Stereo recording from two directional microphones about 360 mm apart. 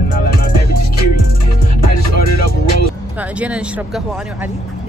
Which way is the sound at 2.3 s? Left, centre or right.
Left.